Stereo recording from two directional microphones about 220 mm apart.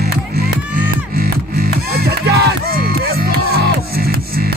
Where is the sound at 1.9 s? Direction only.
45° right (ahead or behind).